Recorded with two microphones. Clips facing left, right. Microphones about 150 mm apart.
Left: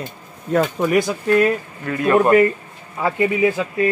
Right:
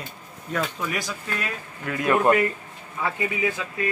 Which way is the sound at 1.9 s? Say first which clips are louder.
Left 4 dB; 15° right (ahead or behind).